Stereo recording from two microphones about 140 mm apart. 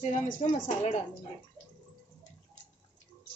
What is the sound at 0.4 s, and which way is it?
Speech, 50° left (ahead or behind).